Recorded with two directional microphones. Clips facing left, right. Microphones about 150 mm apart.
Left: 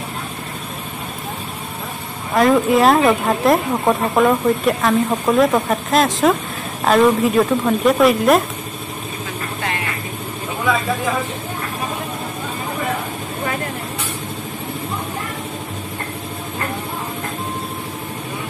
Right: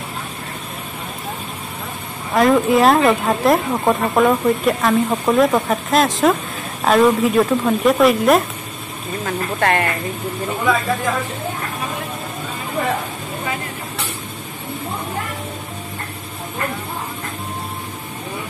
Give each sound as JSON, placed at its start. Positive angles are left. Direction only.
{"t": 2.3, "sound": "speech", "side_deg": 0}
{"t": 9.2, "sound": "vehicle", "side_deg": -60}